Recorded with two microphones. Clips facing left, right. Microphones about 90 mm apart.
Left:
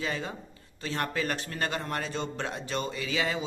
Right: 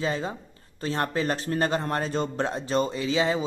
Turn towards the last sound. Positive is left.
turn(degrees=-25)  # may be behind; listen again after turning